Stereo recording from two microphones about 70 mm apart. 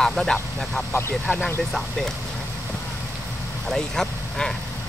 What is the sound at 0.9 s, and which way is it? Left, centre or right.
Speech, left.